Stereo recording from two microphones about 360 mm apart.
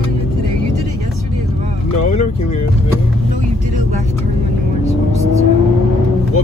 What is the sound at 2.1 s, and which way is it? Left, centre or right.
Speech, centre.